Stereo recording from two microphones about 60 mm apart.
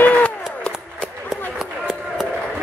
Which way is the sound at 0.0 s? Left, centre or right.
Left.